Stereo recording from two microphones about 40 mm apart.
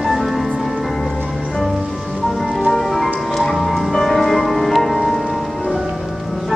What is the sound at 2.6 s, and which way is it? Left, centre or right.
Music, centre.